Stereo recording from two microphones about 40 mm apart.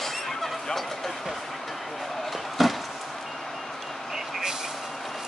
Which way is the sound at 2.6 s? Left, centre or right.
Centre.